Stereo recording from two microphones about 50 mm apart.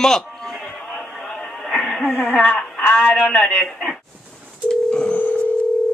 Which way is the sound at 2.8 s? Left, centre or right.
Left.